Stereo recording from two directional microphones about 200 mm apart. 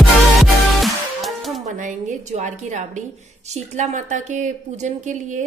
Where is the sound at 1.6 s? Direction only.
35° right (ahead or behind).